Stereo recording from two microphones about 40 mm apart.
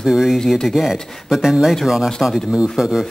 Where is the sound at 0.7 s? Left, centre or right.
Centre.